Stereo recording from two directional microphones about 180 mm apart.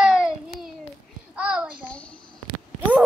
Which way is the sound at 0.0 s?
5° right (ahead or behind).